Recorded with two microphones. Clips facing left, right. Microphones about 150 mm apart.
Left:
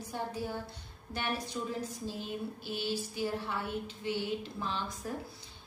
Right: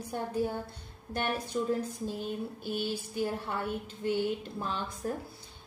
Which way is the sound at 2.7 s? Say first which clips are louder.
Right 2 dB; 50° right (ahead or behind).